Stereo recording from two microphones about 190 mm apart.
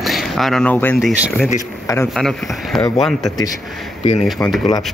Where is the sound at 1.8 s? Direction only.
15° left (ahead or behind).